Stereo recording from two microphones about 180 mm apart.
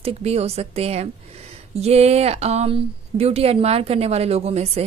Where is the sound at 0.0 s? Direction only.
35° right (ahead or behind).